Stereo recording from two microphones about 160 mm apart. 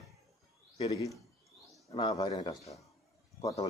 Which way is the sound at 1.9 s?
25° left (ahead or behind).